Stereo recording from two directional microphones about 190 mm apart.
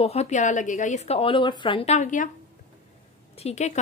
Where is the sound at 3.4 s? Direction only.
35° left (ahead or behind).